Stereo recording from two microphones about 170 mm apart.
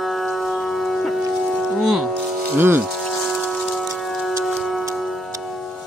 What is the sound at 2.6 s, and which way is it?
Speech, 15° right (ahead or behind).